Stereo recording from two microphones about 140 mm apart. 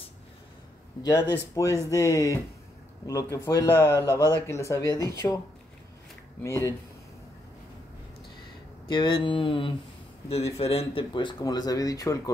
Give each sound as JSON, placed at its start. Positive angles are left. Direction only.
{"t": 1.5, "sound": "speech", "side_deg": 25}
{"t": 6.4, "sound": "speech", "side_deg": 20}
{"t": 8.8, "sound": "speech", "side_deg": 35}
{"t": 10.2, "sound": "speech", "side_deg": 45}